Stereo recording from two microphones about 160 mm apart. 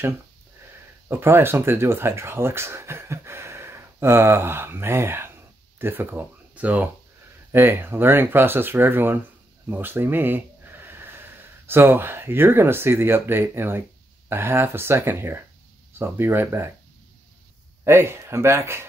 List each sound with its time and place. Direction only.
1.0 s speech: 15° right (ahead or behind)
17.8 s speech: 15° right (ahead or behind)